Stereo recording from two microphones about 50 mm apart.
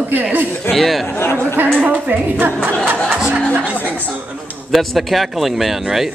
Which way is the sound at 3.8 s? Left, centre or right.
Left.